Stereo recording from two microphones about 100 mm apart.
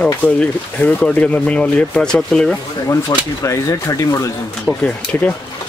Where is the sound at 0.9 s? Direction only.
15° left (ahead or behind).